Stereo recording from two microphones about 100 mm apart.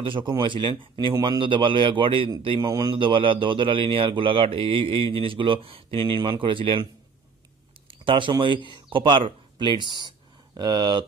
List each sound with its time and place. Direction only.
0.0 s speech: 55° right (ahead or behind)
7.9 s speech: 60° right (ahead or behind); by 11.1 s 45° right (ahead or behind)